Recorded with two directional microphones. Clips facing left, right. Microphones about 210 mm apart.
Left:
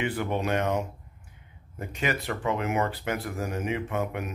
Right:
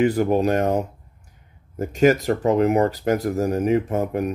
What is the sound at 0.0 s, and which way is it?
Speech, 40° right (ahead or behind).